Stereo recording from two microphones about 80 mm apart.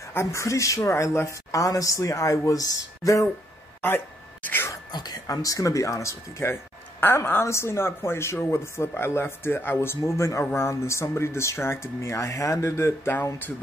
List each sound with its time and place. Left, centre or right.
0.1 s a woman's voice: left
4.5 s a sound: left
5.2 s speech: left